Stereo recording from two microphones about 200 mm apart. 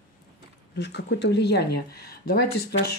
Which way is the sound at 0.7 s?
55° left (ahead or behind).